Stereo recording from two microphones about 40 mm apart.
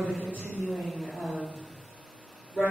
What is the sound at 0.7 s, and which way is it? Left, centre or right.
A man's voice, centre.